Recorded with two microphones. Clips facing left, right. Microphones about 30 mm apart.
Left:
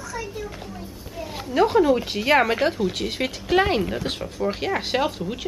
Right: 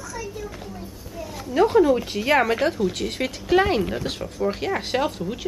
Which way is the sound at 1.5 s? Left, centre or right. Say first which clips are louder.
Right 1 dB; centre.